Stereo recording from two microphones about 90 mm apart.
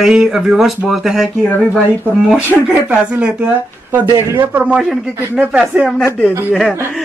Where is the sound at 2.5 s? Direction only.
10° right (ahead or behind).